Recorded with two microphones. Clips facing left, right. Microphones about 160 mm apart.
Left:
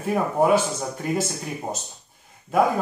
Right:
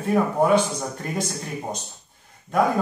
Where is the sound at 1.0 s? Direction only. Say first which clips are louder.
Left 6 dB; 5° left (ahead or behind).